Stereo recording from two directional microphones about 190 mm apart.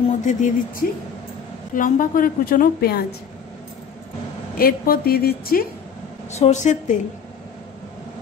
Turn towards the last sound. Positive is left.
turn(degrees=40)  # may be behind; listen again after turning